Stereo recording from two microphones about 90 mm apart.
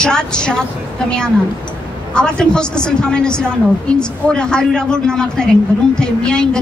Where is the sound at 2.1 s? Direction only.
10° left (ahead or behind).